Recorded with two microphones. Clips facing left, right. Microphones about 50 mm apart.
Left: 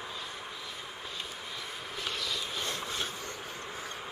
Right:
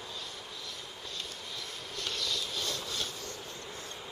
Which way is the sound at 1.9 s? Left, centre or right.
Centre.